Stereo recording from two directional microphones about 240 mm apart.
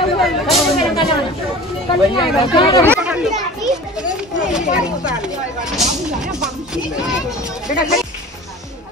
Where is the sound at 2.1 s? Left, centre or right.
Centre.